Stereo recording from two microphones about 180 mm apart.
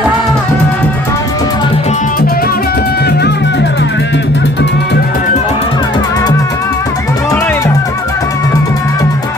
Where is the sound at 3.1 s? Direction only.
65° left (ahead or behind).